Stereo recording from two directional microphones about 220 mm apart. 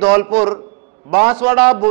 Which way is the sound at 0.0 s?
5° right (ahead or behind).